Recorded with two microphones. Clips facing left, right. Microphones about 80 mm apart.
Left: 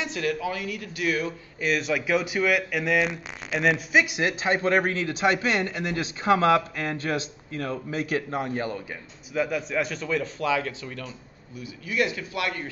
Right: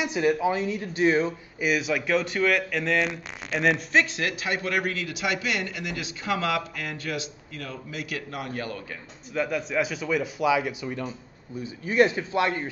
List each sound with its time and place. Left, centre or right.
0.0 s speech: centre
1.6 s speech: centre
4.0 s a man's voice: centre
9.3 s a man's voice: centre
11.6 s speech: right